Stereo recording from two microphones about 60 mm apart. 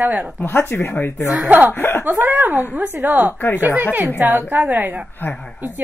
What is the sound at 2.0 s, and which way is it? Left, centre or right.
A woman's voice, right.